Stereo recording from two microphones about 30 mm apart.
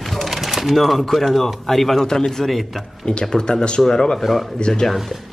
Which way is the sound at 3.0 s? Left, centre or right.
Left.